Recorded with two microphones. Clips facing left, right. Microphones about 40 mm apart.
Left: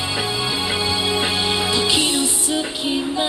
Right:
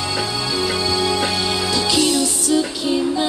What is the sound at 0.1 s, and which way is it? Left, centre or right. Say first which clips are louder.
Music: left 1 dB; left.